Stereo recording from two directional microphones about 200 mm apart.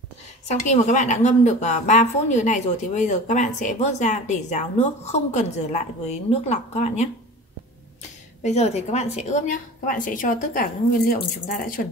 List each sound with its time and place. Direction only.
0.5 s a woman's voice: 40° left (ahead or behind)
8.4 s a woman's voice: 35° left (ahead or behind)